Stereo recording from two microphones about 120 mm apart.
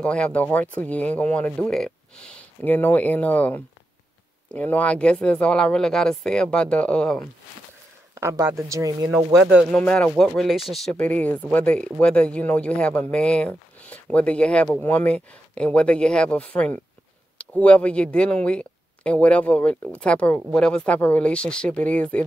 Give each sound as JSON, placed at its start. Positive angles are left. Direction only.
{"t": 0.0, "sound": "speech", "side_deg": 10}
{"t": 8.1, "sound": "speech", "side_deg": -25}
{"t": 9.7, "sound": "speech", "side_deg": 10}